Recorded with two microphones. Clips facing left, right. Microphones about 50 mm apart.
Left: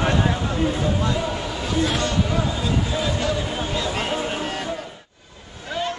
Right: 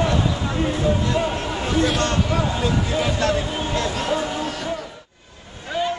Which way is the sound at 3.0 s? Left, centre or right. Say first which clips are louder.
Right 3 dB; right.